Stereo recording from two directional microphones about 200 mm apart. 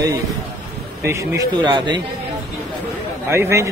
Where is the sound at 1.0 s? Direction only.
20° right (ahead or behind).